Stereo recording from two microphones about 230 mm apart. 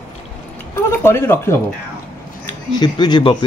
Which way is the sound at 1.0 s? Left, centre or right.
Centre.